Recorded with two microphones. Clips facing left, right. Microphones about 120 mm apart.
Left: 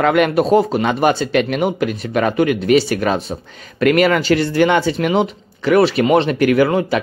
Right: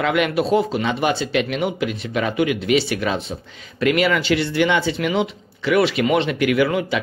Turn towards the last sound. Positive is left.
turn(degrees=40)  # may be behind; listen again after turning